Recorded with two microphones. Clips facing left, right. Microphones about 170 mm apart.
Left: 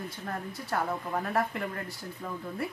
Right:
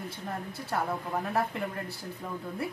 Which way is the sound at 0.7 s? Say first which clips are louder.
Even; 5° right (ahead or behind).